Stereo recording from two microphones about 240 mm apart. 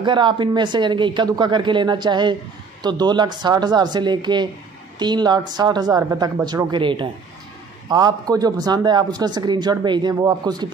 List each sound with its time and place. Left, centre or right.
0.0 s speech: centre